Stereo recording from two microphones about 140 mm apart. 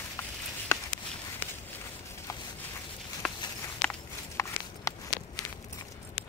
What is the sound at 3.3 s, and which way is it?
Walk, 30° left (ahead or behind).